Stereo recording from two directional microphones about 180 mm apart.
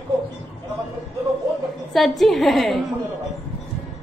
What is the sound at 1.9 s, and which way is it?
Speech, centre (ahead or behind).